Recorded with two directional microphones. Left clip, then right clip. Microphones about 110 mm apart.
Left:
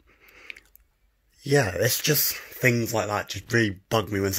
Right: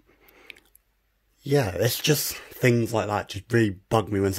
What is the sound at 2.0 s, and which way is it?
Speech, 50° right (ahead or behind).